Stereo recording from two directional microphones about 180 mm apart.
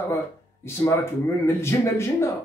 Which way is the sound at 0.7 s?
15° left (ahead or behind).